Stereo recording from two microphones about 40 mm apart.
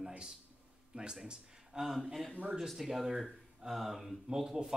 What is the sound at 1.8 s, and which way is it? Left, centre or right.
Speech, centre.